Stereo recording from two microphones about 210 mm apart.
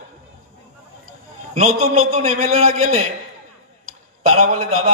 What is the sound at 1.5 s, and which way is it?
A man's voice, 40° right (ahead or behind).